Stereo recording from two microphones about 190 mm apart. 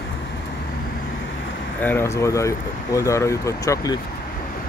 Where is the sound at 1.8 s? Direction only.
10° left (ahead or behind).